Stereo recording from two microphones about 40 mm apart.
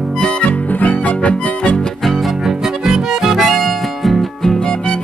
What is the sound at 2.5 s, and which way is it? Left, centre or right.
Music, centre.